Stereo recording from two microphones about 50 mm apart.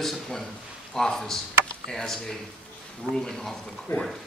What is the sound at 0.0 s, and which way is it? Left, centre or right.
Speech, centre.